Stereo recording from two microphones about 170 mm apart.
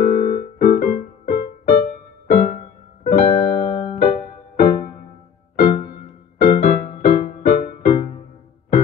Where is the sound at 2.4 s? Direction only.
50° left (ahead or behind).